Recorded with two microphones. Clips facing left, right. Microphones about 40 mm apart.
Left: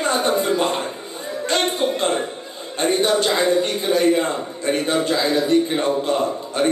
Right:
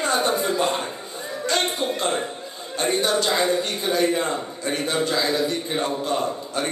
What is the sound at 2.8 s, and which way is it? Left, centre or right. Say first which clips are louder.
A man's voice: left 4 dB; left.